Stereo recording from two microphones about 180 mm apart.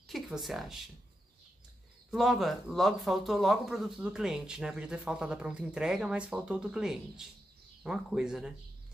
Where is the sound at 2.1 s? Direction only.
Centre (ahead or behind).